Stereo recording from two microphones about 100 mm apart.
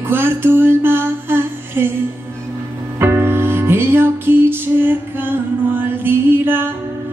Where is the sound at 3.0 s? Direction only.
25° right (ahead or behind).